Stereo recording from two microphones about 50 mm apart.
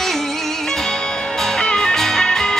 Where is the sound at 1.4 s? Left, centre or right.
Centre.